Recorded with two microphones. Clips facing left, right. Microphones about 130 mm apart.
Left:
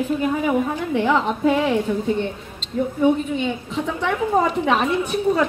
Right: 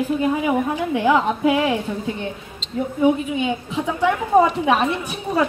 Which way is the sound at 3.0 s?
10° right (ahead or behind).